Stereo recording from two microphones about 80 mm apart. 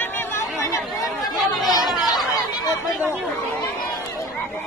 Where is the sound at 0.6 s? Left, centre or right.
Left.